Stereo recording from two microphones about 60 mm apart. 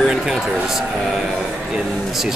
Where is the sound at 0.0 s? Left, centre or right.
Centre.